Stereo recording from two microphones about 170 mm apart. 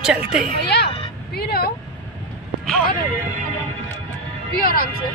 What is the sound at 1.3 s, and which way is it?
Vehicle, 65° left (ahead or behind).